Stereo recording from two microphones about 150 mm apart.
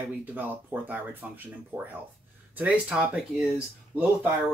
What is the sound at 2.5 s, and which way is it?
Speech, 10° right (ahead or behind).